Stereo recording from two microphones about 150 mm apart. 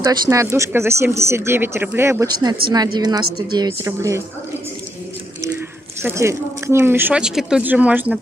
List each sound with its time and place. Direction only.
0.0 s a woman's voice: 20° right (ahead or behind)
6.0 s speech: 15° right (ahead or behind)